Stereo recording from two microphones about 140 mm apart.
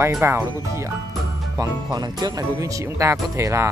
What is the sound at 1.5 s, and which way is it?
Speech, 25° right (ahead or behind).